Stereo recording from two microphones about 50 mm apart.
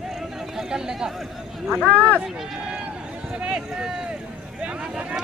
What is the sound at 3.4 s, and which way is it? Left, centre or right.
Run, centre.